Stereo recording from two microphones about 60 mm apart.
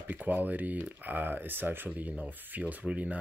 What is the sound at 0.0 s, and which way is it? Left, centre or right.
Speech, right.